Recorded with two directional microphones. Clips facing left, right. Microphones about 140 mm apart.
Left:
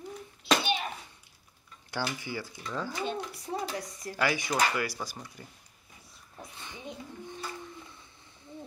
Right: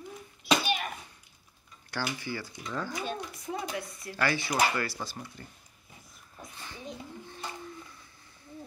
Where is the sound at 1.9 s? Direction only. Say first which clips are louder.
Left 1 dB; 15° left (ahead or behind).